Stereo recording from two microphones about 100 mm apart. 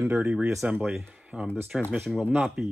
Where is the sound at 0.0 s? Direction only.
25° right (ahead or behind).